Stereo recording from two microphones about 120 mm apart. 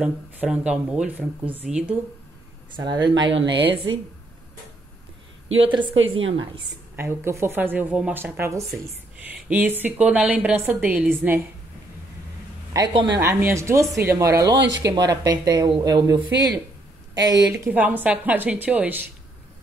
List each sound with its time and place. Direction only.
0.0 s speech: 10° right (ahead or behind)
2.7 s speech: 40° right (ahead or behind)
5.6 s a woman's voice: 45° right (ahead or behind)
7.0 s speech: 20° right (ahead or behind)
13.2 s speech: 20° right (ahead or behind)
17.6 s speech: 15° right (ahead or behind)